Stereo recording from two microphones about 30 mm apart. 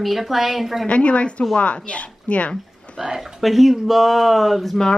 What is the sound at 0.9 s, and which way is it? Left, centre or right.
A woman's voice, left.